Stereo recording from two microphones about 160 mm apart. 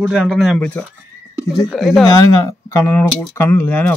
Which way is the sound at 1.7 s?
Centre (ahead or behind).